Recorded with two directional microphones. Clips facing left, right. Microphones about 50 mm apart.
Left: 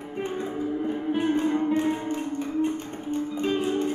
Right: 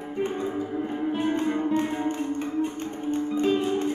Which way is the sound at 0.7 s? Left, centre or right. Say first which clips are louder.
Left 1 dB; centre.